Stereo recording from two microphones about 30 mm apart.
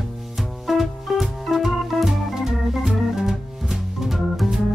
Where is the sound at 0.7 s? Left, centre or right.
Centre.